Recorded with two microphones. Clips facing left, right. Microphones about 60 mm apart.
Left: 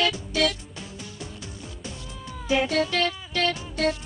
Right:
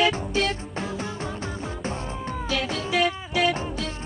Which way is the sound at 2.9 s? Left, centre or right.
Centre.